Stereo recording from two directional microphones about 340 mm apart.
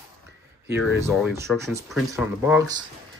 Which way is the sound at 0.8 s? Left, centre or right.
Centre.